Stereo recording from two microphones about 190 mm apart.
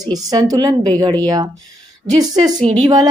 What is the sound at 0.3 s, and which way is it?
A woman's voice, 20° right (ahead or behind).